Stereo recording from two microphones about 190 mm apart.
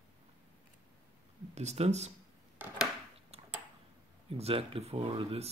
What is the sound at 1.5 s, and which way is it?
Speech, 35° right (ahead or behind).